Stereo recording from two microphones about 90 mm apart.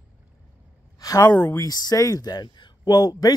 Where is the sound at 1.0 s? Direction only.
40° left (ahead or behind).